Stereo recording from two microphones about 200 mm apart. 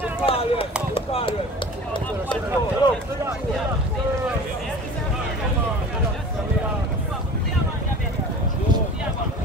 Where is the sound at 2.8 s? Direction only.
20° left (ahead or behind).